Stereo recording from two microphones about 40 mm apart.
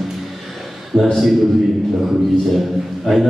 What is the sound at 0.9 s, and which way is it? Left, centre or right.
Speech, right.